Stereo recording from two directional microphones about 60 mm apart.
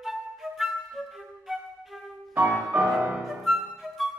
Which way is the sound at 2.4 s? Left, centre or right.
Right.